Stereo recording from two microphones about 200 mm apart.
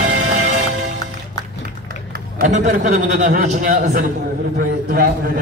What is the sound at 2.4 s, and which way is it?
A man's voice, 40° right (ahead or behind).